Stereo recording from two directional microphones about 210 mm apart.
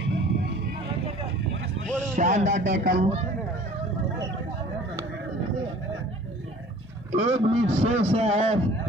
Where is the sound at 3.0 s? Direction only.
30° right (ahead or behind).